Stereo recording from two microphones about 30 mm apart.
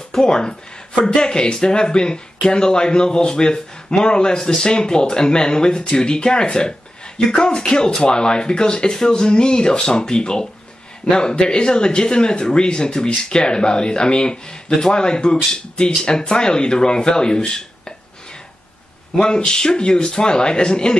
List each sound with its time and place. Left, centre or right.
0.1 s speech: left
19.2 s speech: left